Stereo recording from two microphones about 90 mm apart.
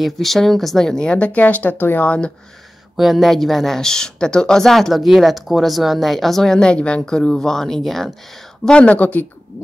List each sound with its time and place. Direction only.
0.0 s speech: centre (ahead or behind)
3.0 s speech: centre (ahead or behind); by 9.2 s 15° left (ahead or behind)